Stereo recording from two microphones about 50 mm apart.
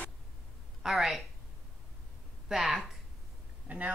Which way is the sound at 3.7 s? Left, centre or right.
Right.